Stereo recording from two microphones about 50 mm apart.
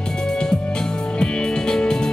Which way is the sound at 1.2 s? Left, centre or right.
Centre.